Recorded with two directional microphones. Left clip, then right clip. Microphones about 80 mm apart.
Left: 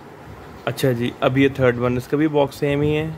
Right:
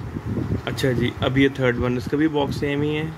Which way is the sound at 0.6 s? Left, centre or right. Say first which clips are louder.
Left 3 dB; left.